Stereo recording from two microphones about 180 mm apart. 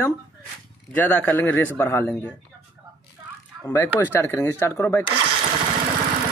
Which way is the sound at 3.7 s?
10° left (ahead or behind).